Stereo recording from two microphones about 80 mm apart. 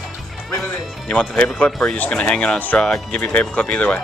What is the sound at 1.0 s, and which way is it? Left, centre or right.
Speech, centre.